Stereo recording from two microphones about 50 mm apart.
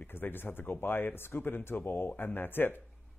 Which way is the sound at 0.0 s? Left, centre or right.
Left.